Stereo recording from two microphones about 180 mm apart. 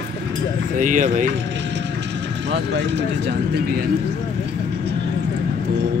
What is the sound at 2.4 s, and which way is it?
Speech, 70° right (ahead or behind).